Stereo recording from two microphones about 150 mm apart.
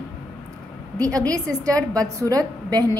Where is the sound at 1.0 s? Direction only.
25° right (ahead or behind).